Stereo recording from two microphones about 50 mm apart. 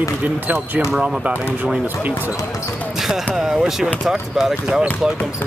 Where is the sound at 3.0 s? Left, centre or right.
Centre.